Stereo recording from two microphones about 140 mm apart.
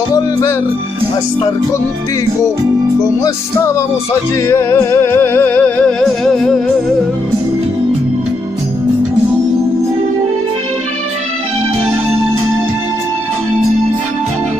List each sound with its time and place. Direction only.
0.1 s music: 25° left (ahead or behind)
3.3 s music: 20° left (ahead or behind); by 6.6 s centre (ahead or behind)